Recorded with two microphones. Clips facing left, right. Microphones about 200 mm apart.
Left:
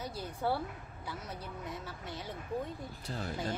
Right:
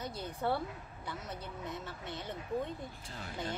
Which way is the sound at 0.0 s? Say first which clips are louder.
Left 1 dB; 10° left (ahead or behind).